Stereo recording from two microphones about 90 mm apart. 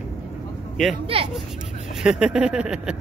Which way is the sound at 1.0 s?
90° right.